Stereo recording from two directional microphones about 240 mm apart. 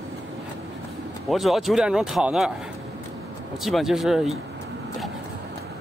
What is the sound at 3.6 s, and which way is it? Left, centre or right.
Speech, centre.